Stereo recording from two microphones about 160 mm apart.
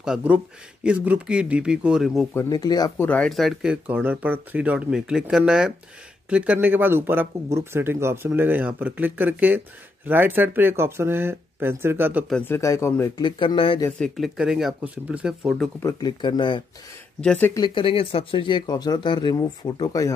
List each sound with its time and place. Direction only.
0.0 s speech: 5° right (ahead or behind)
2.3 s speech: 25° left (ahead or behind)
3.0 s speech: 10° left (ahead or behind); by 12.3 s 10° right (ahead or behind)
12.3 s speech: 5° left (ahead or behind)
12.5 s speech: 20° left (ahead or behind)
13.2 s speech: 30° left (ahead or behind)
13.9 s speech: centre (ahead or behind)
15.8 s speech: 25° left (ahead or behind)
17.2 s speech: 5° left (ahead or behind)
17.6 s speech: 30° left (ahead or behind)